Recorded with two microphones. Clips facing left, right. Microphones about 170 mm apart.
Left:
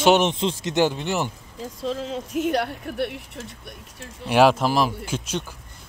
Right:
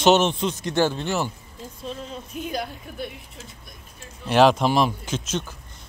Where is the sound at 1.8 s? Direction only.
90° left; by 4.1 s 70° left (ahead or behind).